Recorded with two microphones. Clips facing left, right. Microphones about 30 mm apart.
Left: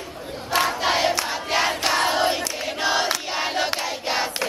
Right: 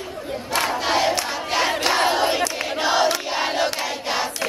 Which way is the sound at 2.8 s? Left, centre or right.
Centre.